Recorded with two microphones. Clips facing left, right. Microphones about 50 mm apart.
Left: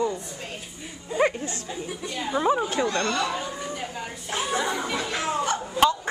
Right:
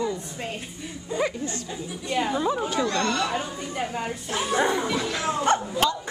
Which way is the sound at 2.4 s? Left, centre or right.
Left.